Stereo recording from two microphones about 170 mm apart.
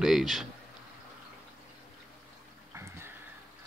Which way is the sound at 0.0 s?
Centre (ahead or behind).